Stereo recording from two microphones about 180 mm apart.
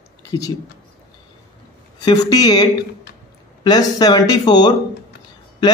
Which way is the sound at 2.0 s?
20° left (ahead or behind).